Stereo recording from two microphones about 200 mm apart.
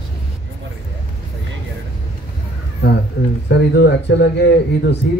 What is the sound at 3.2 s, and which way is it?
A man's voice, 55° left (ahead or behind).